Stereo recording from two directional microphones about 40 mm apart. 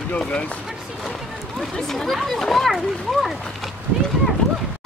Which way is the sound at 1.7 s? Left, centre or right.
Centre.